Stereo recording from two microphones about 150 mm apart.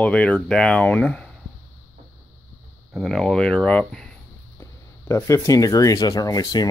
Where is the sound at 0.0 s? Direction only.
5° left (ahead or behind).